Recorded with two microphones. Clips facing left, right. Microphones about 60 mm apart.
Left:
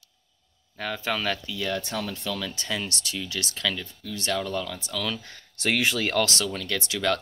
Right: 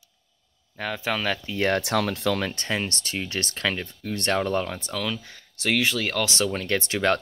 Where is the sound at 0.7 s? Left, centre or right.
Centre.